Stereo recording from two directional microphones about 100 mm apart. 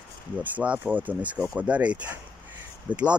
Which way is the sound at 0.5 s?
15° right (ahead or behind).